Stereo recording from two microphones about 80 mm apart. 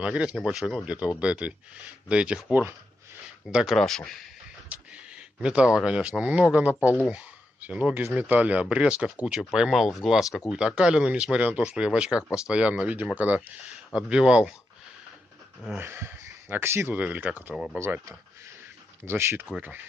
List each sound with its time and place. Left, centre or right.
0.0 s speech: centre
0.8 s speech: centre
3.4 s speech: centre
4.7 s a sound: centre
5.4 s speech: centre
15.8 s speech: right
16.9 s speech: centre
19.0 s speech: right